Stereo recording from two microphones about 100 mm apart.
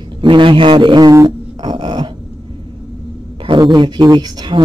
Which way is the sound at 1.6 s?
50° right (ahead or behind).